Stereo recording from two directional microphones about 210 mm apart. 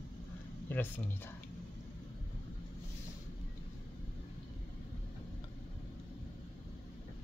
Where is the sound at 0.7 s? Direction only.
10° left (ahead or behind).